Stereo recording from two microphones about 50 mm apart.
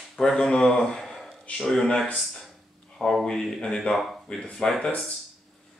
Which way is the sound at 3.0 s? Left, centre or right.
Centre.